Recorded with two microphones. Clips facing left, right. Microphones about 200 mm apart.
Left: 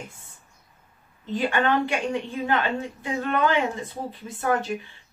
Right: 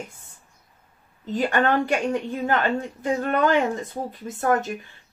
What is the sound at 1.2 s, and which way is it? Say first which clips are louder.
Speech: right 2 dB; 40° right (ahead or behind).